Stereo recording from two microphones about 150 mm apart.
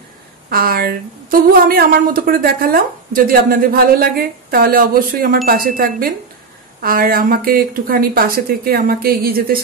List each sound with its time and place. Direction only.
0.5 s speech: 80° right